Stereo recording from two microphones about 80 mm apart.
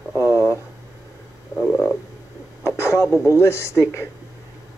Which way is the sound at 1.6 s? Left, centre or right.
Centre.